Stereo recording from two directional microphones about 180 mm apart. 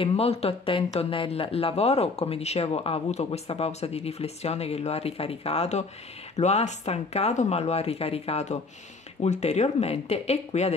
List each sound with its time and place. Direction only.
0.0 s speech: 35° left (ahead or behind)